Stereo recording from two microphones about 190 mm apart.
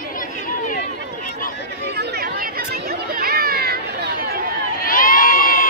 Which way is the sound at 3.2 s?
50° right (ahead or behind).